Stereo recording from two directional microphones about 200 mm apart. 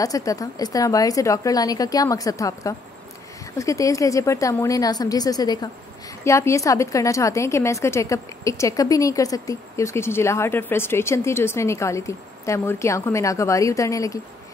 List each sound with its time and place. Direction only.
0.0 s a woman's voice: 15° left (ahead or behind)